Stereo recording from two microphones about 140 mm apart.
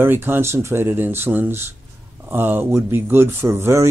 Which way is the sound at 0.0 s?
15° right (ahead or behind).